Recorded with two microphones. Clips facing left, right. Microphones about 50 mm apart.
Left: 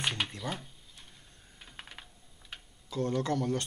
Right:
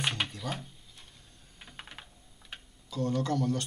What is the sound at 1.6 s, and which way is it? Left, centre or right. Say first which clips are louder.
Typing: right 1 dB; centre.